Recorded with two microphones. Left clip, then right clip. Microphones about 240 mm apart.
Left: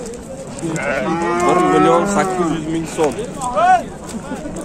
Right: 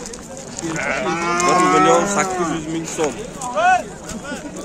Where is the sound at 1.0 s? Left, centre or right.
Right.